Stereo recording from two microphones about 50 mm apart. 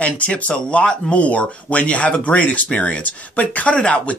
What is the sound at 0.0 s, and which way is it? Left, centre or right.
Speech, left.